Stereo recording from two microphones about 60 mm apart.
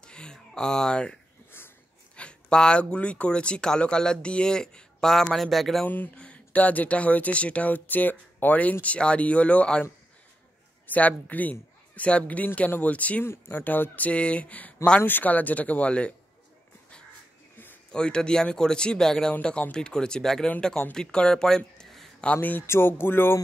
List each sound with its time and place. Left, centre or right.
0.0 s a sound: centre
2.1 s speech: centre
6.1 s a sound: centre
6.5 s speech: left
10.9 s speech: left
13.2 s speech: left
15.0 s speech: left
17.9 s speech: centre
22.2 s music: left
22.7 s music: left